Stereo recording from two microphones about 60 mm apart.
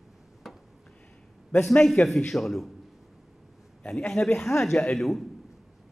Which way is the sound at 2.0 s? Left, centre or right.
Left.